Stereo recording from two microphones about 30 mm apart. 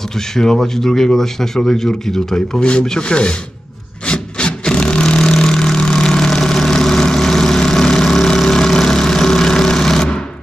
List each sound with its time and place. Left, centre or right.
0.1 s speech: centre
2.6 s speech: left
4.0 s wood: left
5.5 s vehicle: left